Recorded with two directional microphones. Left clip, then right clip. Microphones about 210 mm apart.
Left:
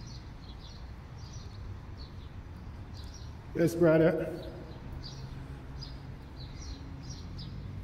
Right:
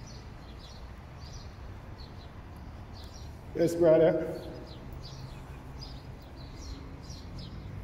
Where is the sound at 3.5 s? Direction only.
20° left (ahead or behind).